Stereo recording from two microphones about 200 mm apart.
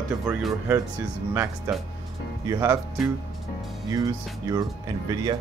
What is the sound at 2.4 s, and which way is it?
Speech, 15° right (ahead or behind).